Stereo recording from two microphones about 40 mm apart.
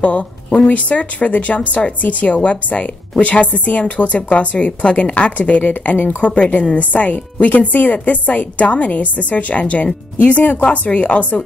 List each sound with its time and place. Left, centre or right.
0.7 s speech: left